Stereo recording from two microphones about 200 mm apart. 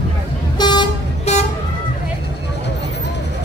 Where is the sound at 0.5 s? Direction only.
20° left (ahead or behind).